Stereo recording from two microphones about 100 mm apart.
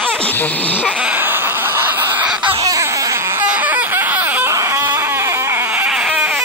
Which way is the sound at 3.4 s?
15° right (ahead or behind).